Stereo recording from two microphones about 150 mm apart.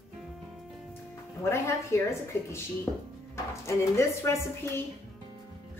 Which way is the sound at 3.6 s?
20° left (ahead or behind).